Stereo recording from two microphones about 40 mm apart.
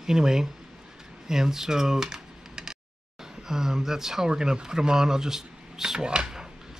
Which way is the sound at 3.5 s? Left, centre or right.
Centre.